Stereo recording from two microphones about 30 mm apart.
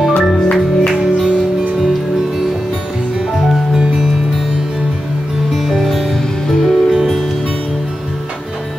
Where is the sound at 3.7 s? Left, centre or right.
Centre.